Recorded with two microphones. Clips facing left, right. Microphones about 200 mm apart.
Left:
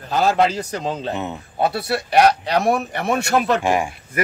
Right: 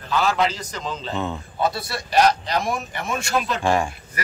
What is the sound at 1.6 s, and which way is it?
Speech, 65° left (ahead or behind).